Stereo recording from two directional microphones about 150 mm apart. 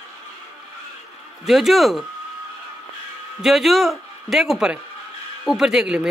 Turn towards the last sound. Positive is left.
turn(degrees=-5)  # may be behind; listen again after turning